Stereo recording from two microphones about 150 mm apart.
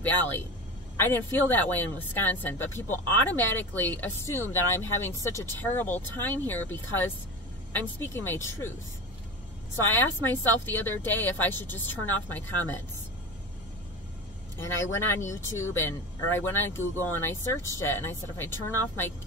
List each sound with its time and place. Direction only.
0.0 s speech: 15° left (ahead or behind)
10.2 s speech: 15° left (ahead or behind)
14.6 s speech: 15° left (ahead or behind)